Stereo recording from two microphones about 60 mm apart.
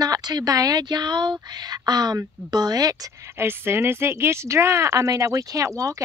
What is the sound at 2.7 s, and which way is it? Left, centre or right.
Speech, right.